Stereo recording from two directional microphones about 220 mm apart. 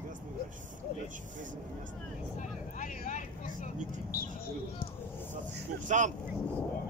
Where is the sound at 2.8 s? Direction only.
35° left (ahead or behind).